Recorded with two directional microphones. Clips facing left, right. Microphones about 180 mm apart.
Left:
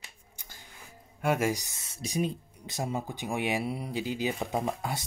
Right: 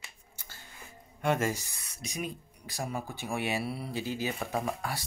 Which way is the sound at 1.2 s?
10° left (ahead or behind).